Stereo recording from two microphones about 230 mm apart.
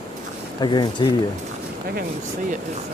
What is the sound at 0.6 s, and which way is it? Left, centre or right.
Speech, centre.